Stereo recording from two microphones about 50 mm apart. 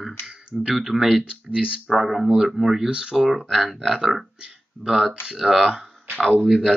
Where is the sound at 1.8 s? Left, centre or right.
Centre.